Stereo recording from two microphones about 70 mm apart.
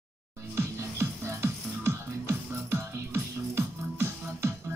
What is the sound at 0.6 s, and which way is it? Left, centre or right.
Music, right.